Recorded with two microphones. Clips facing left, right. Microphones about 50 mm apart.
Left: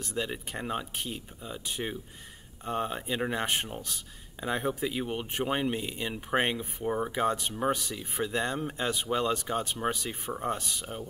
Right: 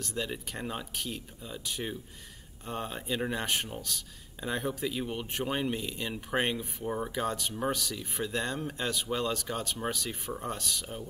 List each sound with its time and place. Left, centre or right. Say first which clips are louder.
0.0 s speech: left 2 dB; centre